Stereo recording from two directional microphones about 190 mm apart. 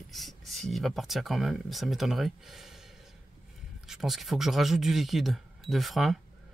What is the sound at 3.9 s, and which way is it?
Speech, centre (ahead or behind).